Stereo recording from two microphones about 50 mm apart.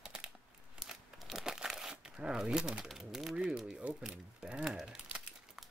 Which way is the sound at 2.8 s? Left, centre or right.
Centre.